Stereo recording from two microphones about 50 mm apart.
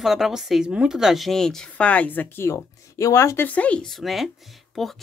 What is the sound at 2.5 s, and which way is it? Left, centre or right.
Speech, left.